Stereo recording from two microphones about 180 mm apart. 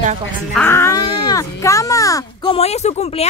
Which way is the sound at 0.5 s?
15° left (ahead or behind).